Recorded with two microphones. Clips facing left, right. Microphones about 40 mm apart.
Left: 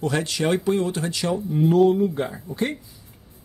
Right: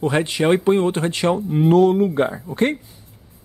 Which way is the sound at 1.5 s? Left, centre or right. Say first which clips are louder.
Right 2 dB; right.